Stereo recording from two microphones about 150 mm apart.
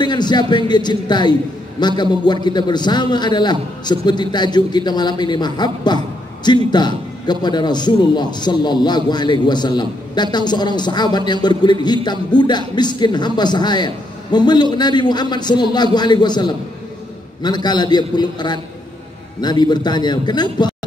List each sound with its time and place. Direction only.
0.0 s a man's voice: 30° left (ahead or behind)